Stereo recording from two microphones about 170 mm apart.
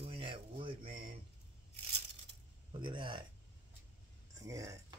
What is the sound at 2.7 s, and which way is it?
Speech, 30° right (ahead or behind).